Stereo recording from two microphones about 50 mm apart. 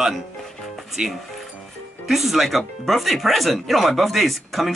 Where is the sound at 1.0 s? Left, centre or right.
Centre.